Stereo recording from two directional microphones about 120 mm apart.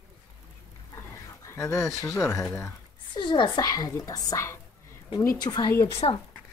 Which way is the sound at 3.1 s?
40° left (ahead or behind).